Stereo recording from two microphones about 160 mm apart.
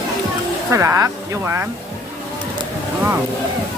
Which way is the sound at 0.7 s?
15° right (ahead or behind).